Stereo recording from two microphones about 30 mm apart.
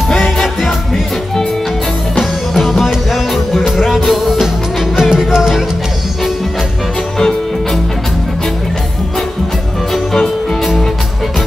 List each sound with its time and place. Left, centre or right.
0.4 s music: centre
2.5 s music: centre
5.1 s music: right
7.2 s music: centre